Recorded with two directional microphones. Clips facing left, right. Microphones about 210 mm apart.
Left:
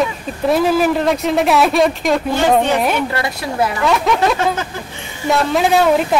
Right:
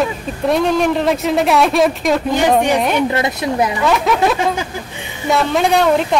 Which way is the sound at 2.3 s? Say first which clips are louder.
Right 1 dB; 15° right (ahead or behind).